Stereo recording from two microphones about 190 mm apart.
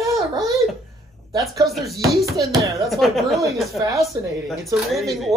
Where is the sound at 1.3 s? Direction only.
15° right (ahead or behind).